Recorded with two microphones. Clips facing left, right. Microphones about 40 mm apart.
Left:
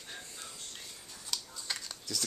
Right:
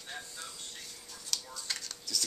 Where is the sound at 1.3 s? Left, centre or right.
Centre.